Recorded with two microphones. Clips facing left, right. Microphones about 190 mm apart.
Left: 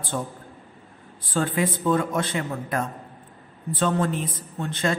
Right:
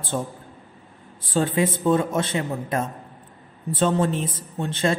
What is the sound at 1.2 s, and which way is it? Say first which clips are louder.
A woman's voice: right 3 dB; 25° right (ahead or behind).